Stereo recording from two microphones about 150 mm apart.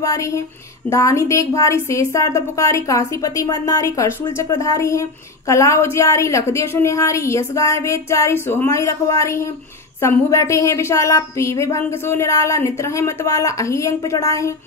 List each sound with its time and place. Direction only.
0.0 s speech: 20° left (ahead or behind)